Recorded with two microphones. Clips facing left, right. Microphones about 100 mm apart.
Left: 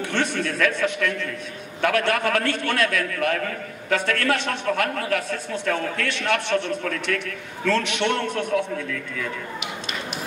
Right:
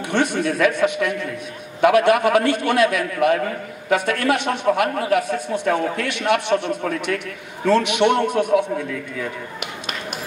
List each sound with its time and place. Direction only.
0.0 s a man's voice: 15° right (ahead or behind)